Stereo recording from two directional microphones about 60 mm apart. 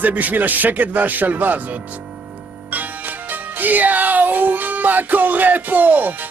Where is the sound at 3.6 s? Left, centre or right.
Right.